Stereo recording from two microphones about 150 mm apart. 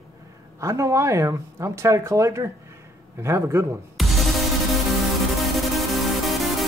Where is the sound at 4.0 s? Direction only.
Centre (ahead or behind).